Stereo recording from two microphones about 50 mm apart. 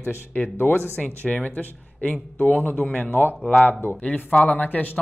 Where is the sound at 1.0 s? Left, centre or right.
Left.